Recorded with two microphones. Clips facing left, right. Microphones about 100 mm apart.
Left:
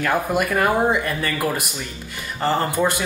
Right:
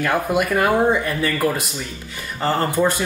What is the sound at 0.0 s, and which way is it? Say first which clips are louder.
Speech: right 1 dB; centre (ahead or behind).